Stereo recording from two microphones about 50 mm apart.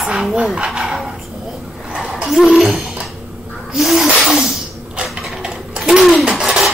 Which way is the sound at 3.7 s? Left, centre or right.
Centre.